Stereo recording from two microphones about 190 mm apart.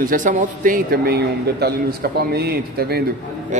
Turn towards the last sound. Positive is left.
turn(degrees=-55)  # may be behind; listen again after turning